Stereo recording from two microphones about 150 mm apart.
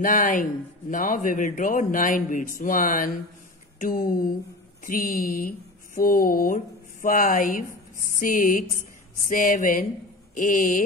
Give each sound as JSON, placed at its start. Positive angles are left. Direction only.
{"t": 0.0, "sound": "speech", "side_deg": 65}